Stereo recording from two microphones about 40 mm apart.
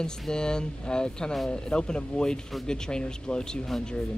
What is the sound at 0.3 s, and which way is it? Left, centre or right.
Speech, centre.